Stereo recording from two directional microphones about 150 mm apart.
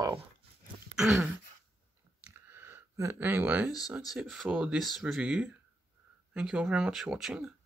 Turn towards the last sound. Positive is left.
turn(degrees=-5)  # may be behind; listen again after turning